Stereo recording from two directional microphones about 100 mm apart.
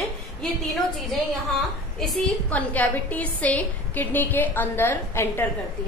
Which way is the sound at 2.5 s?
15° left (ahead or behind).